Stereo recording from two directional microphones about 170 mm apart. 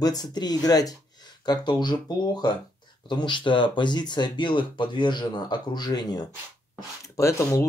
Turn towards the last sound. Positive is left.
turn(degrees=15)  # may be behind; listen again after turning